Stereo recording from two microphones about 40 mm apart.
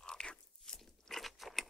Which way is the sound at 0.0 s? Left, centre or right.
Centre.